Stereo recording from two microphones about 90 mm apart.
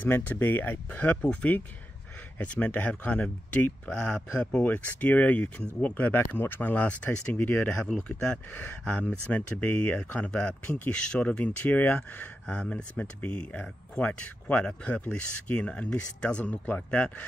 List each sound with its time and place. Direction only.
0.0 s speech: 20° left (ahead or behind)